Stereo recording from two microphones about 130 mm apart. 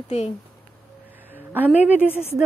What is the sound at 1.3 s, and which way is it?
Speech, 15° right (ahead or behind).